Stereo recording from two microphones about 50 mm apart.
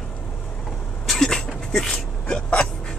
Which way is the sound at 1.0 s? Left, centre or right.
Centre.